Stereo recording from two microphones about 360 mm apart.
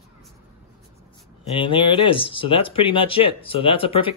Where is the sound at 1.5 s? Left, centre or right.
Centre.